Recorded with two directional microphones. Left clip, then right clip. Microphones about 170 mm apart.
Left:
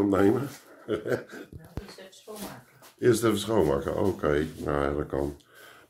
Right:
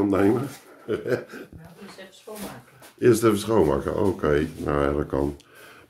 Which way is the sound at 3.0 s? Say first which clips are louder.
Right 4 dB; 10° right (ahead or behind).